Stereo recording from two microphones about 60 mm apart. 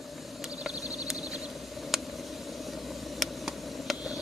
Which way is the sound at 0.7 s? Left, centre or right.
Left.